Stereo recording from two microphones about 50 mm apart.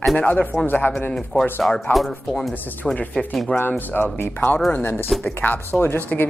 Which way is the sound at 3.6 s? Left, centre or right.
Left.